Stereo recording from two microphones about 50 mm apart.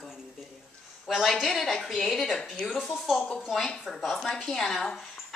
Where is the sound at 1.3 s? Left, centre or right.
Centre.